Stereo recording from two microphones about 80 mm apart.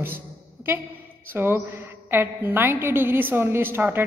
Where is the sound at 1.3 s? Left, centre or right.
Right.